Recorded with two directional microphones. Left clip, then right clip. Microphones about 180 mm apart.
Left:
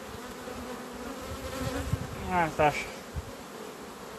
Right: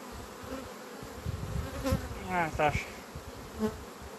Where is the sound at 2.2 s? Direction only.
20° left (ahead or behind).